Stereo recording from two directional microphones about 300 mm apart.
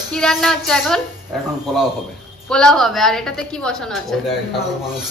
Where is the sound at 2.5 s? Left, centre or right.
Centre.